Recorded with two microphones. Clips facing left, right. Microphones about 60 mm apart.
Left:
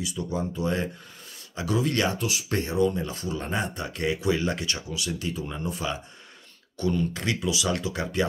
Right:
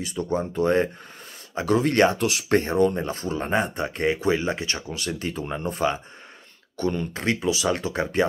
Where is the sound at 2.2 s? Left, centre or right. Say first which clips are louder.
Right 6 dB; right.